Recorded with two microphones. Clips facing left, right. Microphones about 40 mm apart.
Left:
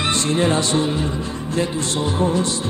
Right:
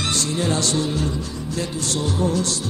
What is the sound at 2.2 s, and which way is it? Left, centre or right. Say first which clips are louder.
Music: left 3 dB; left.